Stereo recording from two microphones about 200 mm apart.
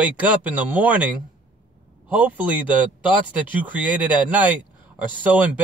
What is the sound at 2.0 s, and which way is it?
Speech, 5° right (ahead or behind).